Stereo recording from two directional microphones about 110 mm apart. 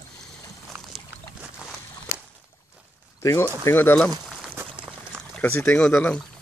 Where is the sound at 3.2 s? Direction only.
25° left (ahead or behind).